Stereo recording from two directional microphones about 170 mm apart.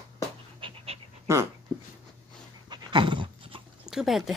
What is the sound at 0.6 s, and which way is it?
Pant, 30° right (ahead or behind).